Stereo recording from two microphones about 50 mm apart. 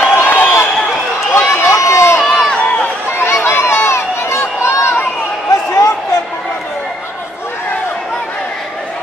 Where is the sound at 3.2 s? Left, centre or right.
Left.